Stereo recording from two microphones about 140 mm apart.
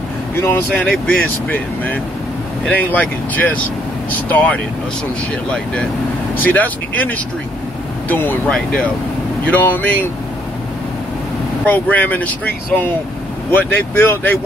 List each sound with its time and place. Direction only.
0.4 s speech: 15° left (ahead or behind)
11.6 s speech: 10° left (ahead or behind)